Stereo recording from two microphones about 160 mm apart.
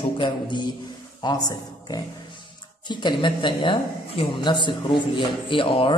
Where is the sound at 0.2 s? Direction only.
30° left (ahead or behind).